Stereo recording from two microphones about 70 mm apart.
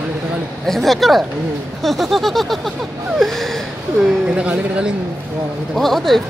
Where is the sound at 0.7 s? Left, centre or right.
Centre.